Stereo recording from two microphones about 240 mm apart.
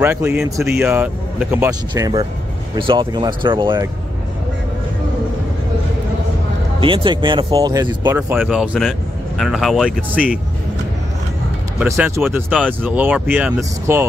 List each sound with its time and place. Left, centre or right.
0.0 s speech: centre
6.8 s speech: right; by 10.4 s centre
11.8 s speech: centre